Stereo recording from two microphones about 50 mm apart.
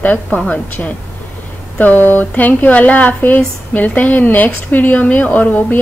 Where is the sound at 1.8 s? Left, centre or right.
Left.